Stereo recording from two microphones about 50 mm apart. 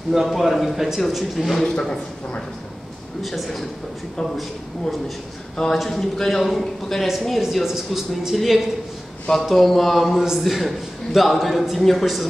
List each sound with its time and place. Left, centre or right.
0.1 s a man's voice: centre
1.8 s speech: centre
3.2 s a man's voice: centre
5.9 s a man's voice: centre